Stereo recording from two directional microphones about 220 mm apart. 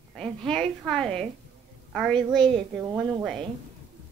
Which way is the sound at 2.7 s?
15° right (ahead or behind).